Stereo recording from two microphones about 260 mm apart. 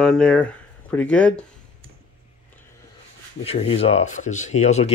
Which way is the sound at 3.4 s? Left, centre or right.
Left.